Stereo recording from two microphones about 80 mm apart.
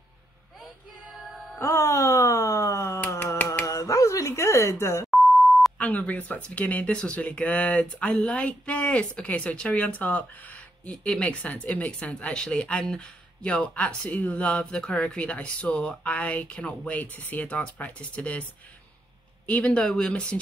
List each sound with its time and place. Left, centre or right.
1.6 s a sound: left
3.6 s telephone: left
5.8 s speech: centre